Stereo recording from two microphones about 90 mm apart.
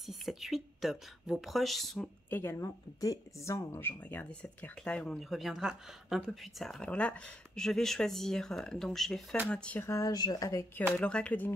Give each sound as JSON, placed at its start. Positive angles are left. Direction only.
{"t": 0.0, "sound": "speech", "side_deg": 0}
{"t": 2.2, "sound": "speech", "side_deg": 25}
{"t": 2.6, "sound": "speech", "side_deg": 40}
{"t": 4.0, "sound": "speech", "side_deg": 20}
{"t": 5.3, "sound": "speech", "side_deg": -5}
{"t": 9.8, "sound": "speech", "side_deg": 35}
{"t": 10.1, "sound": "speech", "side_deg": 45}
{"t": 11.0, "sound": "speech", "side_deg": 15}